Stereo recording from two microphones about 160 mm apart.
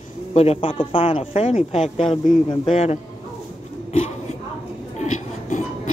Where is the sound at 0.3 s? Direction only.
40° left (ahead or behind).